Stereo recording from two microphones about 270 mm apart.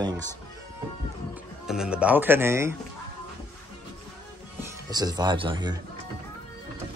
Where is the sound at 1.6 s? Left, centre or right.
Centre.